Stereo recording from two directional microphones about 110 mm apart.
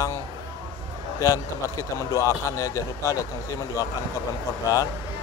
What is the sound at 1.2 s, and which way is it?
Speech, 30° left (ahead or behind).